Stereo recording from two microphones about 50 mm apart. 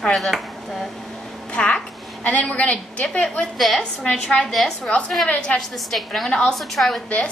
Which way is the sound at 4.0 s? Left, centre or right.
Centre.